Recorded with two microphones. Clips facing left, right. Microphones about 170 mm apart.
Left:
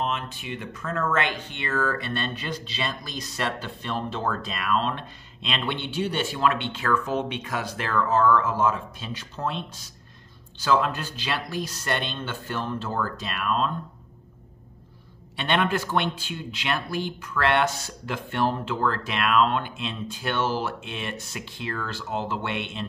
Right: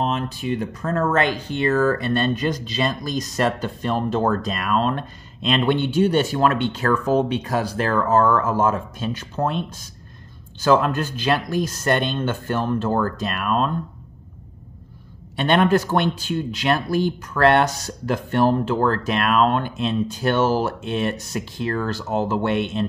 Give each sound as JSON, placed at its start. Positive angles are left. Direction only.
{"t": 0.0, "sound": "speech", "side_deg": -40}
{"t": 15.3, "sound": "speech", "side_deg": -45}